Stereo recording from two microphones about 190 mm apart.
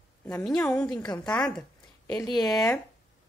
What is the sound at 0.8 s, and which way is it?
Speech, 20° left (ahead or behind).